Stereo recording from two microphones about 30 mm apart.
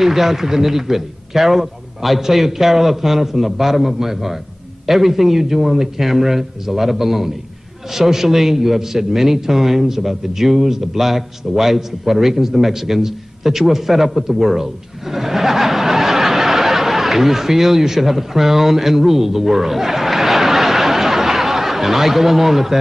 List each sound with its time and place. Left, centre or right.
0.0 s a man's voice: centre